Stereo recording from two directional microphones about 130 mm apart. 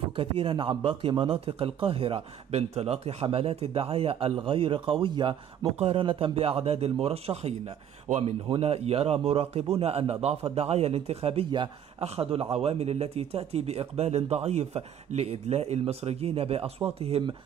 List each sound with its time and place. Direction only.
0.1 s speech: 40° right (ahead or behind)